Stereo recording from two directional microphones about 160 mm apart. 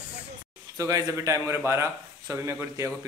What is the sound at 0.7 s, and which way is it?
A man's voice, 20° right (ahead or behind).